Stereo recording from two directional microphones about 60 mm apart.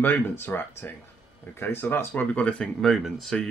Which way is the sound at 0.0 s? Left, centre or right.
Left.